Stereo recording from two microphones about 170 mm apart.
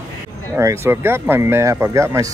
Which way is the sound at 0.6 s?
15° right (ahead or behind).